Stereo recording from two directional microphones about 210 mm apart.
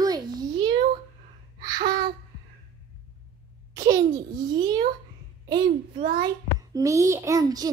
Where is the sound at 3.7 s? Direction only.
15° right (ahead or behind).